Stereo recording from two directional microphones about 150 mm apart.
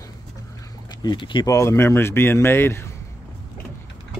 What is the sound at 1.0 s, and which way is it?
Speech, 30° left (ahead or behind).